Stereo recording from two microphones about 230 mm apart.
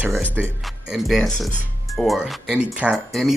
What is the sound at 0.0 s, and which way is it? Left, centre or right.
Speech, centre.